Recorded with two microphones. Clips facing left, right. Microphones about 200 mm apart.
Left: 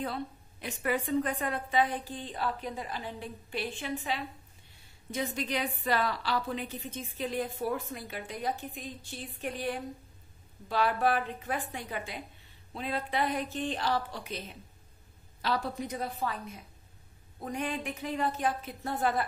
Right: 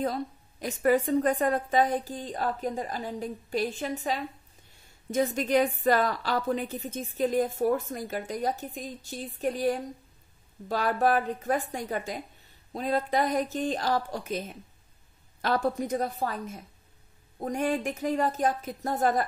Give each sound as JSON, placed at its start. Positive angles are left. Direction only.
{"t": 0.0, "sound": "a woman's voice", "side_deg": -40}
{"t": 15.4, "sound": "a woman's voice", "side_deg": -50}